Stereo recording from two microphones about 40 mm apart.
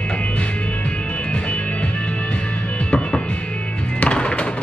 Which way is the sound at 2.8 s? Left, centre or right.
Left.